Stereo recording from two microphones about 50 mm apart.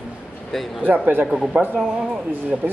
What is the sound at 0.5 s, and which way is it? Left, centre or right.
Speech, centre.